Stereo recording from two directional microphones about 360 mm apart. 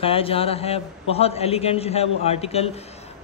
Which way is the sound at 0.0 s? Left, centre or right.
Centre.